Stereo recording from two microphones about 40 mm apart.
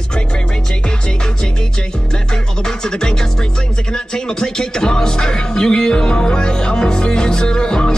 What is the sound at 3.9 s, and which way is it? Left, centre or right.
Speech, centre.